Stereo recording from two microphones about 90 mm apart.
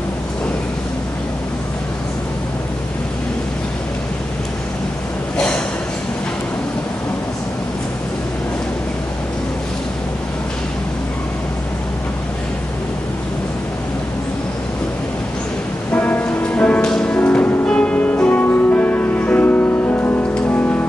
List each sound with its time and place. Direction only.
15.9 s music: 20° left (ahead or behind)